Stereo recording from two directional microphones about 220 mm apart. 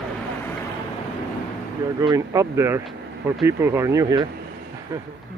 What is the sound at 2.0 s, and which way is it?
Speech, 15° right (ahead or behind).